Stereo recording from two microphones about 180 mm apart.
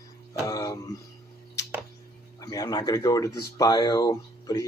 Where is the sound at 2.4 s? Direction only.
20° left (ahead or behind).